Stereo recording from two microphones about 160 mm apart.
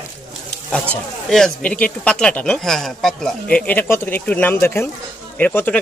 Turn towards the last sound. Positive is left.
turn(degrees=10)  # may be behind; listen again after turning